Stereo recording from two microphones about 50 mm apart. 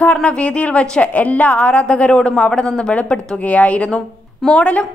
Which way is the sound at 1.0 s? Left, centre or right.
Left.